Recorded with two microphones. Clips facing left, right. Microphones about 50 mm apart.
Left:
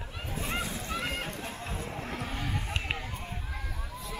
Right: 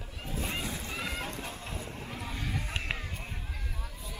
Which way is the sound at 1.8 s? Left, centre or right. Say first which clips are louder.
Left 4 dB; left.